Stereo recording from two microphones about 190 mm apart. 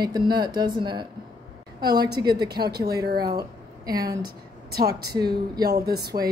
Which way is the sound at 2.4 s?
55° right (ahead or behind).